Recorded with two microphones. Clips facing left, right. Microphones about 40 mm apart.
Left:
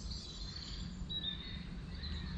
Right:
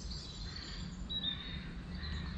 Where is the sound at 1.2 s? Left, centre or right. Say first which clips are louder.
Right 3 dB; right.